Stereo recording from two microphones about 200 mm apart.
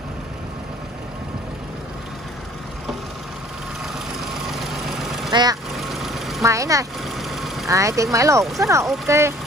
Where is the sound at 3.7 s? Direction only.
Centre (ahead or behind).